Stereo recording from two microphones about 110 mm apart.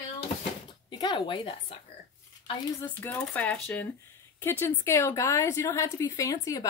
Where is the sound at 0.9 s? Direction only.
45° left (ahead or behind).